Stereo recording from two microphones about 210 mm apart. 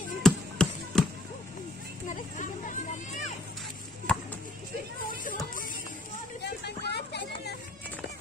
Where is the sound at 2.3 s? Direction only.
35° left (ahead or behind).